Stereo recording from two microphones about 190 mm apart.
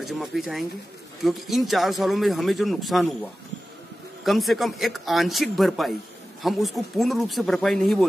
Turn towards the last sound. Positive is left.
turn(degrees=0)  # may be behind; listen again after turning